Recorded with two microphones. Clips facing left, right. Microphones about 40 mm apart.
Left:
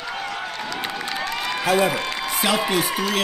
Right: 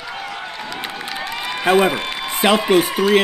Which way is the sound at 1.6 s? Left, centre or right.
Right.